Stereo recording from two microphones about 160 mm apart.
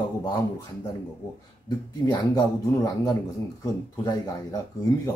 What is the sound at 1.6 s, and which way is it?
Speech, 25° left (ahead or behind).